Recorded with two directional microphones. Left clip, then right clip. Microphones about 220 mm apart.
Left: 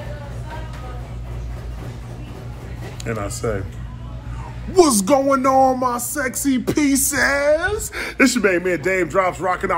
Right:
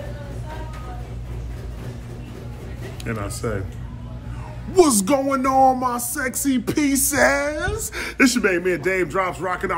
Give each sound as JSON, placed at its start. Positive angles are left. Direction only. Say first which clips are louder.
{"t": 3.0, "sound": "speech", "louder": "left 3 dB", "side_deg": -10}
{"t": 4.7, "sound": "speech", "louder": "left 2 dB", "side_deg": -15}
{"t": 7.1, "sound": "a woman's voice", "louder": "even", "side_deg": -20}
{"t": 7.4, "sound": "speech", "louder": "left 8 dB", "side_deg": -5}
{"t": 7.9, "sound": "speech", "louder": "even", "side_deg": -15}